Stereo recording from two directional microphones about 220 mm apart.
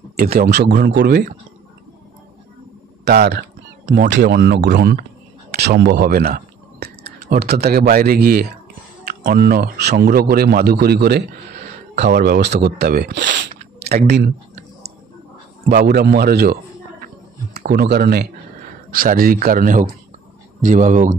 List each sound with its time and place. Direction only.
0.1 s speech: 45° right (ahead or behind)
3.1 s speech: 45° right (ahead or behind)
15.7 s speech: 45° right (ahead or behind)
17.6 s speech: 45° right (ahead or behind)